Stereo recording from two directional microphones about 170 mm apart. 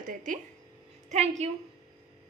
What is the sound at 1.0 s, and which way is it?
Speech, 40° right (ahead or behind).